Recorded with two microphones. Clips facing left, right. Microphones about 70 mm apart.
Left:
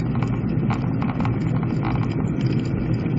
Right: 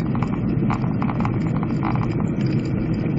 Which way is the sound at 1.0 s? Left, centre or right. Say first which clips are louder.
Right 1 dB; centre.